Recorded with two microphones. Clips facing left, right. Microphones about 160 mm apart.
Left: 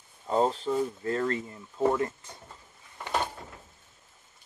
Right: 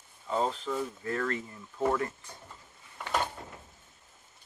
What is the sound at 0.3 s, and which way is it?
Speech, 35° left (ahead or behind).